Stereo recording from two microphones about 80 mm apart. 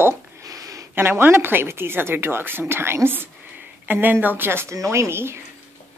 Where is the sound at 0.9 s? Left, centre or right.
Right.